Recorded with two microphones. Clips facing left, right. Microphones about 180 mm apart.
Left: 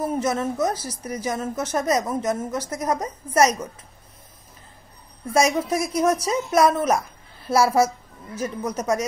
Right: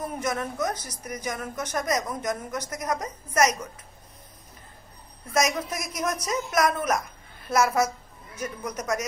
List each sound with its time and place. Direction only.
0.0 s a woman's voice: 25° left (ahead or behind)
5.3 s a woman's voice: 30° left (ahead or behind)